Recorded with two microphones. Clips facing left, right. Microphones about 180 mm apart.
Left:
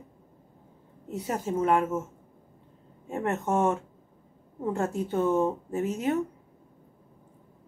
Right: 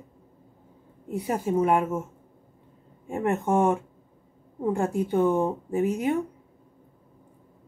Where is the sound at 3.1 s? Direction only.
15° right (ahead or behind).